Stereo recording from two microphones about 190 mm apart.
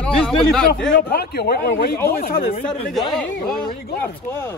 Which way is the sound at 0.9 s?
55° left (ahead or behind).